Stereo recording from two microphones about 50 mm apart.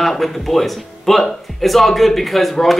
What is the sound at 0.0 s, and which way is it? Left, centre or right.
A man's voice, centre.